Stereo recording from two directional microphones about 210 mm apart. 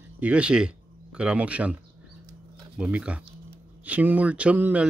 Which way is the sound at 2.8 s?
5° right (ahead or behind).